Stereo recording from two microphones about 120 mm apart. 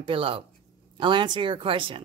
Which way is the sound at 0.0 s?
50° right (ahead or behind).